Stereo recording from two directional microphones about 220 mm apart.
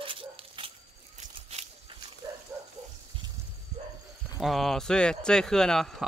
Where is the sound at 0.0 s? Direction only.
25° right (ahead or behind).